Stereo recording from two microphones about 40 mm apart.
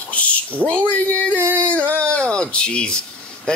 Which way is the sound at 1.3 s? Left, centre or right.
Right.